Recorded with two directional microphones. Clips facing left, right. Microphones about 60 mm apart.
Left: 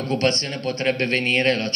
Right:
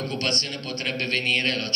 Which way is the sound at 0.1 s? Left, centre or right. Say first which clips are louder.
Left 6 dB; left.